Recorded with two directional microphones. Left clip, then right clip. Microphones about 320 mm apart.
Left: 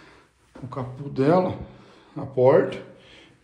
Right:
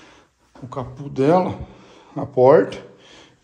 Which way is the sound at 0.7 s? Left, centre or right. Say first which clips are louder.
Right 3 dB; centre.